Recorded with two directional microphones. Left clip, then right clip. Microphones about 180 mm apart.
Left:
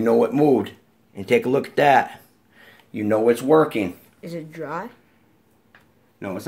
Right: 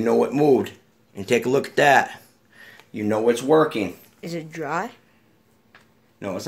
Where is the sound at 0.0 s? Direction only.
20° left (ahead or behind).